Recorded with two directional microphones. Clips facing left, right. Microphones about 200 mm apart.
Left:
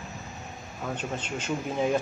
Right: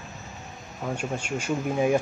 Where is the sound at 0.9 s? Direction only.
10° right (ahead or behind).